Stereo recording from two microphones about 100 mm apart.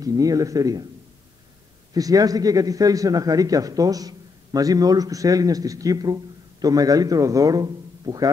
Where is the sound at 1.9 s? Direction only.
35° right (ahead or behind).